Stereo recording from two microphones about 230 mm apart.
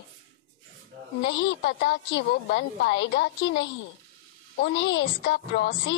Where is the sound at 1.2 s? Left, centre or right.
Left.